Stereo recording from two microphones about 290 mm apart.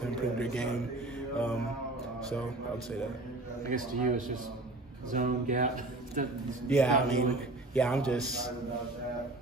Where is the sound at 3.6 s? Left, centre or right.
Right.